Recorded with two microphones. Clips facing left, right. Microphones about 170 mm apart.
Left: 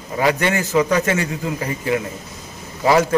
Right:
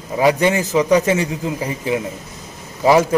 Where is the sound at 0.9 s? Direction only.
15° right (ahead or behind).